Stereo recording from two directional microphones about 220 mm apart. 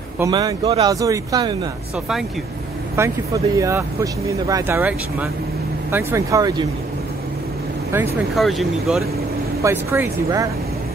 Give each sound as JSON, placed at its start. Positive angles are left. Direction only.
{"t": 0.2, "sound": "speech", "side_deg": -15}
{"t": 3.0, "sound": "speech", "side_deg": -10}
{"t": 8.4, "sound": "speech", "side_deg": 0}
{"t": 9.6, "sound": "speech", "side_deg": -10}